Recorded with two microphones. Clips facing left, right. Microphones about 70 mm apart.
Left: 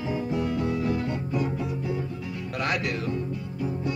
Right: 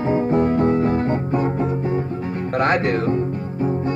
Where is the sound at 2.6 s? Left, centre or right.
Right.